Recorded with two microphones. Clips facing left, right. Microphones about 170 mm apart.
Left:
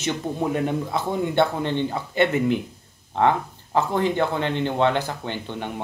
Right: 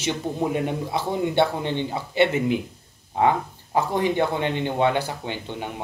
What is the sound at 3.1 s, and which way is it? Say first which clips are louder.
Speech: even; 10° right (ahead or behind).